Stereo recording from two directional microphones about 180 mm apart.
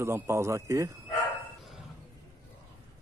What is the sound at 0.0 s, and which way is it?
Speech, 15° right (ahead or behind).